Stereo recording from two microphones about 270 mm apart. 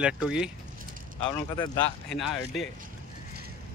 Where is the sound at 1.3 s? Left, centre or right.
Centre.